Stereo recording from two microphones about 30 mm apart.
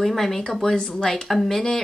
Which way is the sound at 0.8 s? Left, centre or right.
Left.